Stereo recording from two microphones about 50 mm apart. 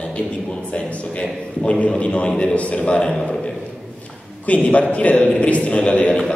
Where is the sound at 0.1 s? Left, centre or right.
Left.